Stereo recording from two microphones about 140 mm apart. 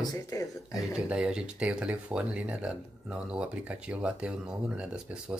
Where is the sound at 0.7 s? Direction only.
5° right (ahead or behind).